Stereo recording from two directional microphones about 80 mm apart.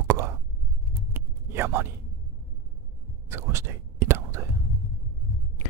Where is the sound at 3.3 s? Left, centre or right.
Right.